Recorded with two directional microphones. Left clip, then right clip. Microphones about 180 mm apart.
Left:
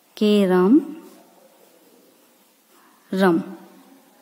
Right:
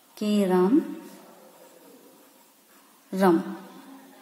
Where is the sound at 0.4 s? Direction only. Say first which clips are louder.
Left 2 dB; 90° left.